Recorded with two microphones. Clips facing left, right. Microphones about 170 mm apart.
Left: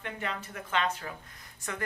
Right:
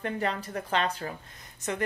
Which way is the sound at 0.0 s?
35° right (ahead or behind).